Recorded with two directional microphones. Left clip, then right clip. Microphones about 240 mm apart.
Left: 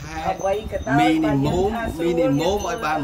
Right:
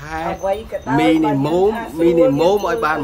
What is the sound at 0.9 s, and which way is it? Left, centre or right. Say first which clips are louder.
Speech: right 3 dB; centre.